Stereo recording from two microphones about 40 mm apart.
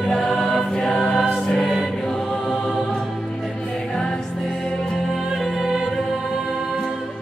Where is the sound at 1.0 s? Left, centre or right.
Centre.